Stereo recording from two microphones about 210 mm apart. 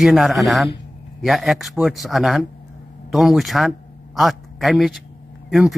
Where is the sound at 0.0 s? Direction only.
Centre (ahead or behind).